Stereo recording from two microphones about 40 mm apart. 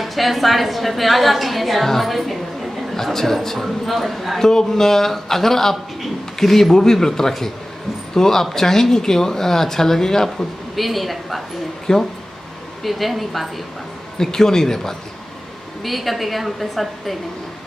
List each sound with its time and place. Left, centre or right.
0.0 s a woman's voice: centre
4.4 s speech: centre
10.8 s a woman's voice: centre
11.9 s speech: centre
12.8 s a woman's voice: centre
14.1 s a woman's voice: centre